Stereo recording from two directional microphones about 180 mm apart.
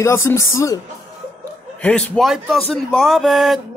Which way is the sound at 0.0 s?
15° left (ahead or behind).